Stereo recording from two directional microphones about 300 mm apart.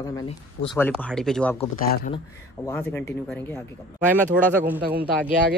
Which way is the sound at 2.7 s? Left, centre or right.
Centre.